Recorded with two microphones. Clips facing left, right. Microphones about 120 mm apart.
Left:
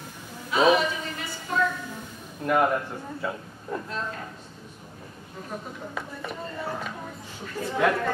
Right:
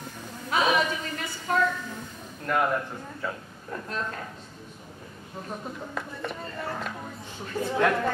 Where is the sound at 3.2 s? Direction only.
10° left (ahead or behind).